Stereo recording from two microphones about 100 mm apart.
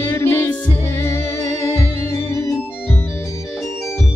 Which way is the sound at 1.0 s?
25° left (ahead or behind).